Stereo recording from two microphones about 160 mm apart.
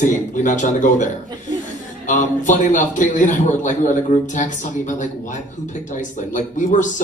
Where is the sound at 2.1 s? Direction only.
50° left (ahead or behind).